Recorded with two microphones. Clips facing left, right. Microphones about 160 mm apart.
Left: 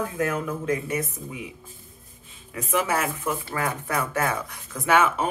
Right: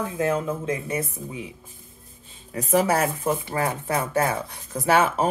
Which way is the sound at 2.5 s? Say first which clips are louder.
Right 4 dB; 35° right (ahead or behind).